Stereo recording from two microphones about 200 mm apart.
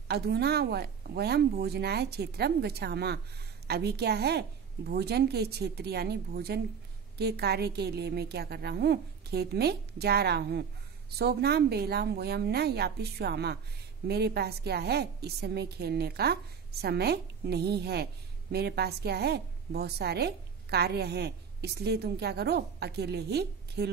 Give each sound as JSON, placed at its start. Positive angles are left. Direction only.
{"t": 0.1, "sound": "a woman's voice", "side_deg": -55}